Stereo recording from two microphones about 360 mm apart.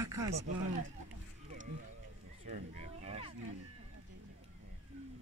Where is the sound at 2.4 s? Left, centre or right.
Centre.